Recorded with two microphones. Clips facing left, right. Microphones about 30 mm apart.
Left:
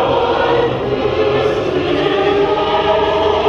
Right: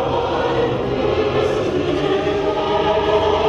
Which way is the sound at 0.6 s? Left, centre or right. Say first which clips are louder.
Left 3 dB; centre.